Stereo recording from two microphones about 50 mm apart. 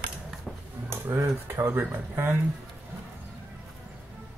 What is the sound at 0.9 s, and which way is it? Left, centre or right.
Speech, right.